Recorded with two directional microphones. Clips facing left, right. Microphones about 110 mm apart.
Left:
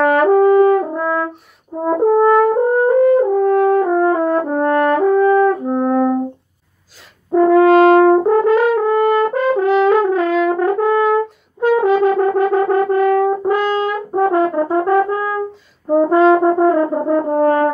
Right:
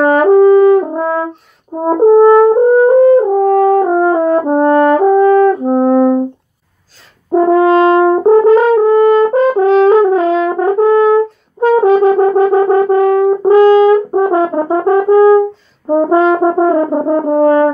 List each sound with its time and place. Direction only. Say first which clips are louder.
0.0 s french horn: right 4 dB; 20° right (ahead or behind)
7.2 s french horn: right 1 dB; 25° right (ahead or behind)
11.6 s brass instrument: right 5 dB; 30° right (ahead or behind)
15.9 s french horn: right 1 dB; 25° right (ahead or behind)